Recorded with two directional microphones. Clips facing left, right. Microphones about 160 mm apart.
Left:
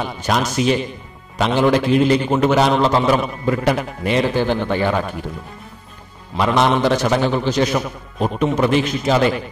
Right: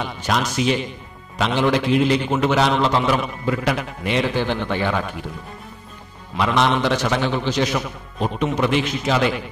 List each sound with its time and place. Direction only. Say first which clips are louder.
0.0 s a man's voice: left 2 dB; 40° left (ahead or behind)
6.3 s a man's voice: left 3 dB; 40° left (ahead or behind)